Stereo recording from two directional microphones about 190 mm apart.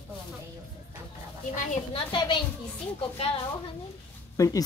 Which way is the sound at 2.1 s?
25° left (ahead or behind).